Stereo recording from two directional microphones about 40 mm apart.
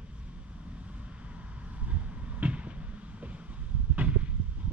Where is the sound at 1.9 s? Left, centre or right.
Right.